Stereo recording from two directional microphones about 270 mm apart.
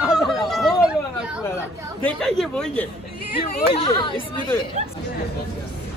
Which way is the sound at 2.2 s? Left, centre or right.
Centre.